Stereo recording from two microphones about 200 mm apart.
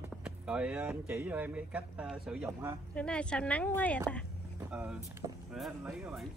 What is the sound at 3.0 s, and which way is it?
A woman's voice, 5° left (ahead or behind).